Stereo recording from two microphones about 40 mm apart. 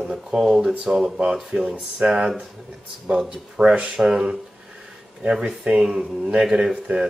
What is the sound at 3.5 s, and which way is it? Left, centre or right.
Speech, right.